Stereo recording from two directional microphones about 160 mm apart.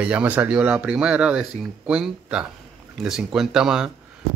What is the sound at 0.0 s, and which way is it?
A man's voice, 10° right (ahead or behind).